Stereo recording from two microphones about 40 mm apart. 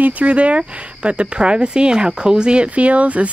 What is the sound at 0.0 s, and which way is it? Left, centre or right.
Speech, right.